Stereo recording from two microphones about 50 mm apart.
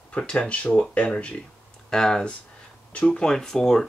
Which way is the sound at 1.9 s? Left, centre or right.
Centre.